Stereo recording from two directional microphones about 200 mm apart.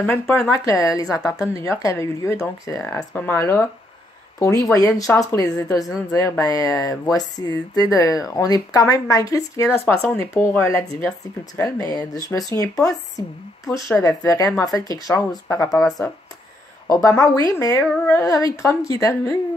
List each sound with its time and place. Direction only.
0.0 s speech: 10° left (ahead or behind)
4.7 s a woman's voice: 15° left (ahead or behind)